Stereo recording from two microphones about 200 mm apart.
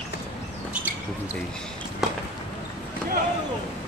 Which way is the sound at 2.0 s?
Centre (ahead or behind).